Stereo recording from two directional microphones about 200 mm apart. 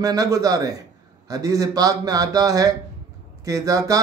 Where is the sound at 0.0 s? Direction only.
20° right (ahead or behind).